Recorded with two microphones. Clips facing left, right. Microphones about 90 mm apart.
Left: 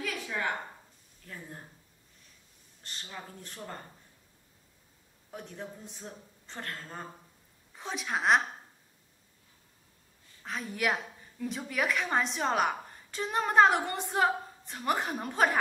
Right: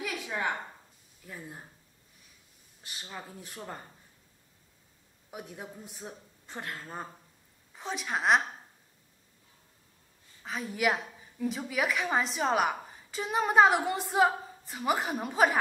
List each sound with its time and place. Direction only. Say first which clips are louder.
0.0 s a sound: right 1 dB; 15° right (ahead or behind)
1.2 s speech: right 1 dB; 5° right (ahead or behind)
2.8 s speech: right 1 dB; 5° right (ahead or behind)
5.3 s a woman's voice: even; 10° right (ahead or behind)
10.4 s a woman's voice: right 2 dB; centre (ahead or behind)